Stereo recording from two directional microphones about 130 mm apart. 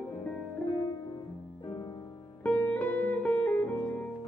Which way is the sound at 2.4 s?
10° left (ahead or behind).